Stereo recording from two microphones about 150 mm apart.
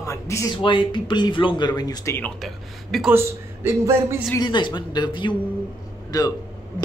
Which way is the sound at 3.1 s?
15° right (ahead or behind).